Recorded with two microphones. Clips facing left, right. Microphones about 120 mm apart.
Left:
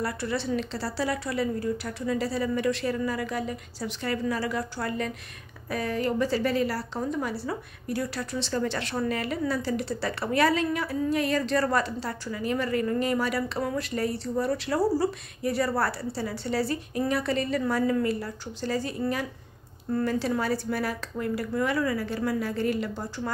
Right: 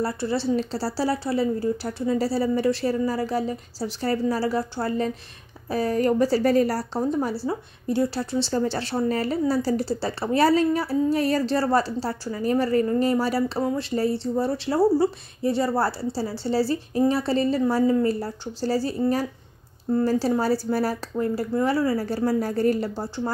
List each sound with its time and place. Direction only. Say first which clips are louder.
0.0 s a woman's voice: right 5 dB; 30° right (ahead or behind)